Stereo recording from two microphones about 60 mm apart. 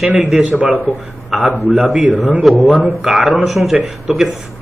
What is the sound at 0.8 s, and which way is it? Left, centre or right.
Speech, centre.